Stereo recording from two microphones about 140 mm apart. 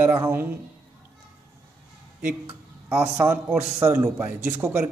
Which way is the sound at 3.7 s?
15° right (ahead or behind).